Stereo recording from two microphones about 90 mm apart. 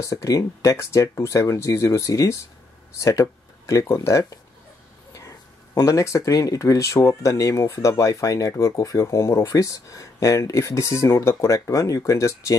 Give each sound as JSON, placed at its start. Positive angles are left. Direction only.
{"t": 0.0, "sound": "speech", "side_deg": 40}
{"t": 5.8, "sound": "speech", "side_deg": 35}